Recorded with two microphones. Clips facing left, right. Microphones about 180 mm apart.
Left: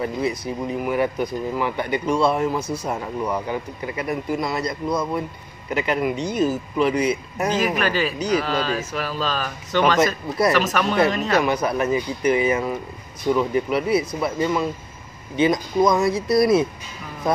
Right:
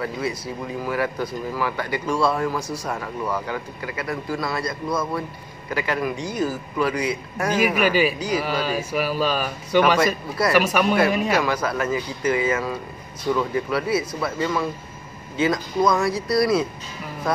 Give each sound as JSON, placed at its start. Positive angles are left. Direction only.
{"t": 0.0, "sound": "speech", "side_deg": 20}
{"t": 7.5, "sound": "speech", "side_deg": -10}
{"t": 11.3, "sound": "speech", "side_deg": 20}